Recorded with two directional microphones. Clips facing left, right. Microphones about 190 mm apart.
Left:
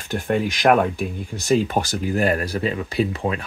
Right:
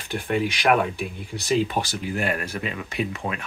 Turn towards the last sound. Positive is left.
turn(degrees=35)  # may be behind; listen again after turning